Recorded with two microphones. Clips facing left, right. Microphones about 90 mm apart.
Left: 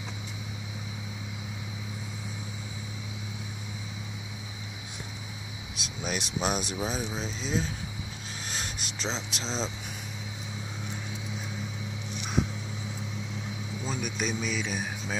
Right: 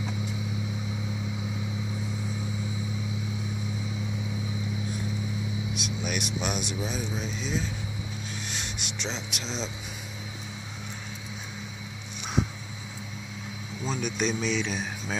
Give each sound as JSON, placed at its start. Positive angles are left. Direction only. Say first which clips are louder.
{"t": 5.8, "sound": "speech", "louder": "left 2 dB", "side_deg": 30}
{"t": 8.5, "sound": "a sound", "louder": "right 1 dB", "side_deg": 35}
{"t": 13.8, "sound": "a man's voice", "louder": "right 4 dB", "side_deg": 5}